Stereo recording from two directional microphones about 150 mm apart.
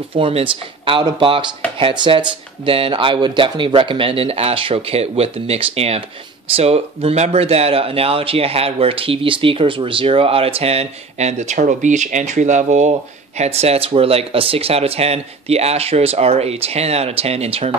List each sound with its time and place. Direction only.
0.1 s speech: 35° right (ahead or behind)